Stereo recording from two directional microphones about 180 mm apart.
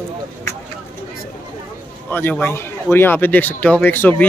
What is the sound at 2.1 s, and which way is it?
Speech, 10° left (ahead or behind).